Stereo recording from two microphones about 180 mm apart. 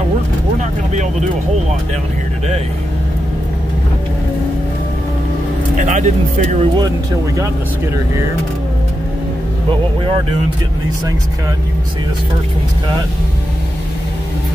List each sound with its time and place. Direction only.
5.9 s speech: 40° right (ahead or behind)